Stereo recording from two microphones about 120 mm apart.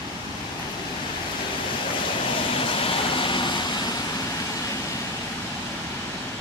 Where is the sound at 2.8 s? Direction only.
45° left (ahead or behind).